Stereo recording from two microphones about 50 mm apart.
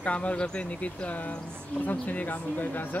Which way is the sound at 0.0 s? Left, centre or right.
Left.